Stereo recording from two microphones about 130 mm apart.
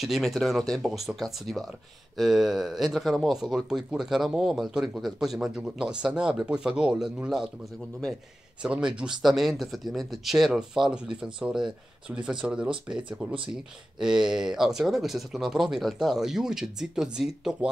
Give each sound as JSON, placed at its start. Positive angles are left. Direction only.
{"t": 0.0, "sound": "speech", "side_deg": 0}
{"t": 8.6, "sound": "speech", "side_deg": -5}